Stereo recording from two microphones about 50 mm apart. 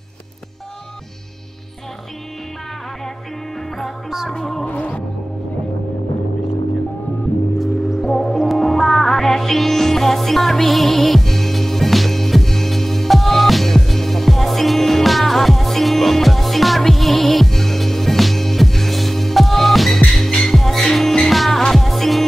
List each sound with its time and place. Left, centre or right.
3.5 s music: centre
4.3 s music: centre
4.6 s music: left
7.5 s music: centre
8.0 s music: centre